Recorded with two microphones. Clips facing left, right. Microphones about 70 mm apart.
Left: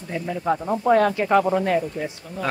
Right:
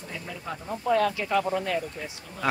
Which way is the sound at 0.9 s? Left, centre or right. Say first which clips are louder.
Left 6 dB; left.